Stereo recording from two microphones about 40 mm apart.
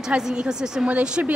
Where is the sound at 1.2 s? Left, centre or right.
Right.